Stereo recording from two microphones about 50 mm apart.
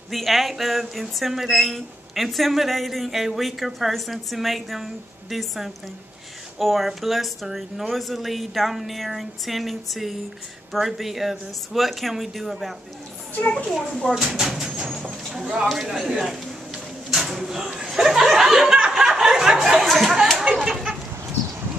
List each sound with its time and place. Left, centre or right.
0.1 s speech: centre
13.3 s a child's voice: left
14.0 s speech: centre
14.9 s a sound: centre
15.7 s speech: centre
17.9 s a sound: centre
20.6 s chicken: centre